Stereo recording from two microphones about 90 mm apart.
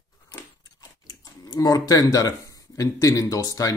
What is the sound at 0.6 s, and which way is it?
Speech, 50° left (ahead or behind).